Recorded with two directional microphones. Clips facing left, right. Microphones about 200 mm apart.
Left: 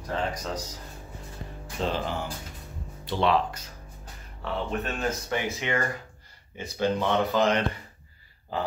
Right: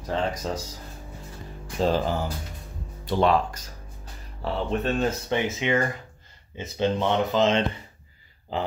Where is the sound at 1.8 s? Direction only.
40° right (ahead or behind).